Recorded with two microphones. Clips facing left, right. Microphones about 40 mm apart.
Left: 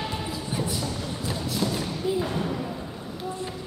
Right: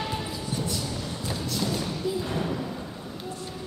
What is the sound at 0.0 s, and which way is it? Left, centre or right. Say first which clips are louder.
Music: even; centre.